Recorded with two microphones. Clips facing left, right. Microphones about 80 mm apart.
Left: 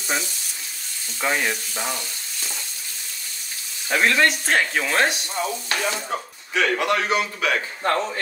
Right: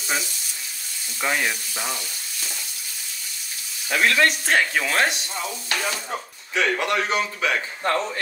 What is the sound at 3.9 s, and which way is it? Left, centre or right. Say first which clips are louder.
Speech: left 1 dB; centre.